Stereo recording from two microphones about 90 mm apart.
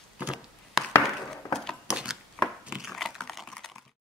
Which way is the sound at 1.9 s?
10° right (ahead or behind).